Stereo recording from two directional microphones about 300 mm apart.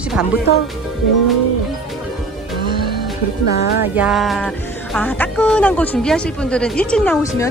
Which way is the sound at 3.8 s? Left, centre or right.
Centre.